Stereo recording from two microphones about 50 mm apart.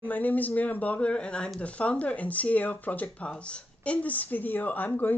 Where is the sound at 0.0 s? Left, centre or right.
Left.